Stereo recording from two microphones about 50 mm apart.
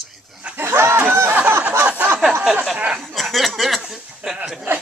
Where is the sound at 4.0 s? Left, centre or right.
Right.